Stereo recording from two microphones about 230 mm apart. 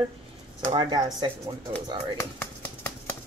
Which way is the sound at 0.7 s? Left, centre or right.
Centre.